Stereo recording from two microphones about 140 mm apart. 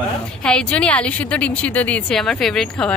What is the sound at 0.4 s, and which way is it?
A woman's voice, 5° left (ahead or behind).